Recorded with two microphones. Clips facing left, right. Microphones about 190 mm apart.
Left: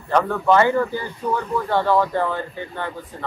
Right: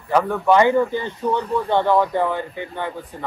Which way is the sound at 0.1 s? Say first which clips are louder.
Right 1 dB; 15° right (ahead or behind).